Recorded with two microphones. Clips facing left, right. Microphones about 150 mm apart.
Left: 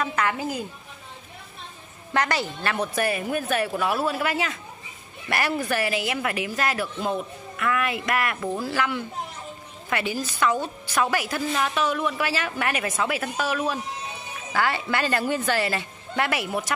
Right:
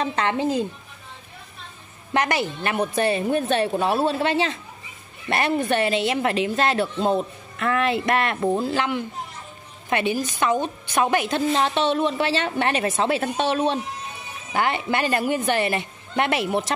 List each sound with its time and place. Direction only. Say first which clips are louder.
0.0 s a woman's voice: right 3 dB; 25° right (ahead or behind)
2.1 s a woman's voice: right 2 dB; 20° right (ahead or behind)